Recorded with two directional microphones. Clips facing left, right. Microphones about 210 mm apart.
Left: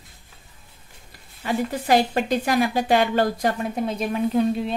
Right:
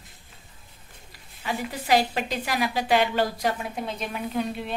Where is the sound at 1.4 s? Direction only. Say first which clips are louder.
Left 6 dB; 50° left (ahead or behind).